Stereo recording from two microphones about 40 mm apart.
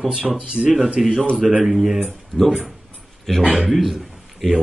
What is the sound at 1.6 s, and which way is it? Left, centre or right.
Speech, centre.